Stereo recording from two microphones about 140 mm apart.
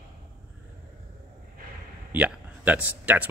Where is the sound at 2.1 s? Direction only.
10° right (ahead or behind).